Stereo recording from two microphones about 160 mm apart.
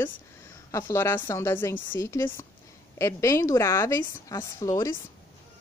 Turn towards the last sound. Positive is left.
turn(degrees=20)  # may be behind; listen again after turning